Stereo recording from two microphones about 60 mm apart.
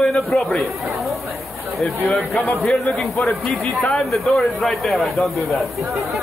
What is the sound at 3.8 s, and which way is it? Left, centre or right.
Speech, centre.